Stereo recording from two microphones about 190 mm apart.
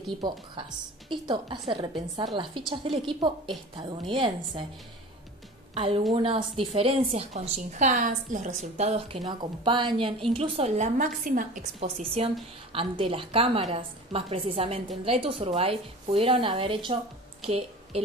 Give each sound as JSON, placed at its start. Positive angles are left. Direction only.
{"t": 0.0, "sound": "a woman's voice", "side_deg": -25}
{"t": 3.5, "sound": "a woman's voice", "side_deg": 0}
{"t": 4.1, "sound": "a woman's voice", "side_deg": -25}
{"t": 5.8, "sound": "a woman's voice", "side_deg": -30}
{"t": 12.0, "sound": "a woman's voice", "side_deg": -30}